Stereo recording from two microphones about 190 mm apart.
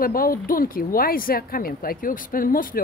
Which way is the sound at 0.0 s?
50° left (ahead or behind).